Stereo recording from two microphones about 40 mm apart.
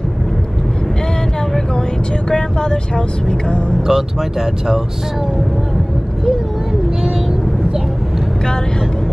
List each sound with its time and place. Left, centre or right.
2.2 s vehicle: centre
3.3 s speech: left
3.8 s speech: centre